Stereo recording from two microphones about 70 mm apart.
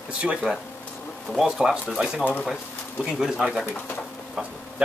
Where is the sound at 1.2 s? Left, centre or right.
Centre.